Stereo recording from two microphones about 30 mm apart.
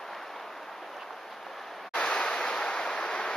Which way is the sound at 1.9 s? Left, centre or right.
Left.